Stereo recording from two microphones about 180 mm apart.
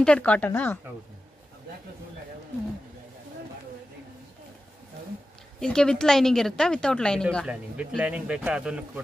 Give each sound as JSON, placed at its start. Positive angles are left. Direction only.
{"t": 0.0, "sound": "speech", "side_deg": 5}
{"t": 5.6, "sound": "a woman's voice", "side_deg": 5}
{"t": 7.3, "sound": "a woman's voice", "side_deg": -5}